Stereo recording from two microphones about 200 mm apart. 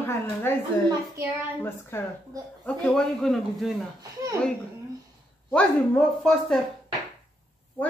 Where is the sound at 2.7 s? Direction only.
5° left (ahead or behind).